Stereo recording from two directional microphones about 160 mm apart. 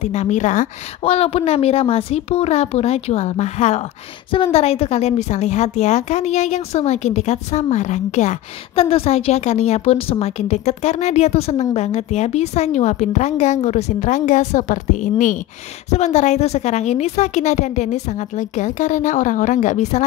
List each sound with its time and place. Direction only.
0.0 s a woman's voice: 45° left (ahead or behind)